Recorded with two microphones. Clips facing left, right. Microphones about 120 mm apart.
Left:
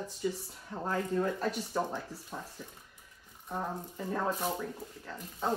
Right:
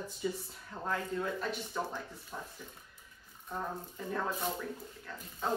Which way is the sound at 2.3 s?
10° left (ahead or behind).